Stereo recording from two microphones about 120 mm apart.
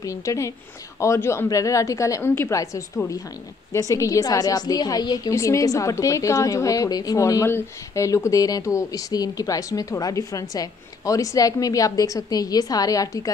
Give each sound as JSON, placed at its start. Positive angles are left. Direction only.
{"t": 0.0, "sound": "a woman's voice", "side_deg": 25}